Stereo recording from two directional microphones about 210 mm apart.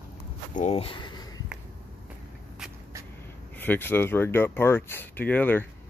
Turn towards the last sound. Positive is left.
turn(degrees=10)  # may be behind; listen again after turning